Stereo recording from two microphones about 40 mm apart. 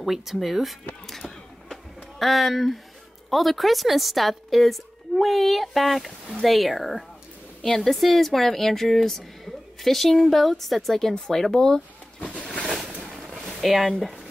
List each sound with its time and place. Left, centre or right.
0.0 s a woman's voice: centre
1.0 s a sound: centre
2.1 s a woman's voice: centre
12.2 s a sound: right
12.8 s boat: right
13.6 s speech: centre